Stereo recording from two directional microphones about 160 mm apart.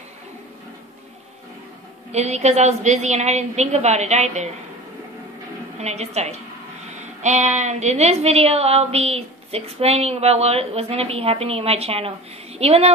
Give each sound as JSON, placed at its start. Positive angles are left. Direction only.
{"t": 2.1, "sound": "a woman's voice", "side_deg": -45}
{"t": 5.8, "sound": "a woman's voice", "side_deg": -45}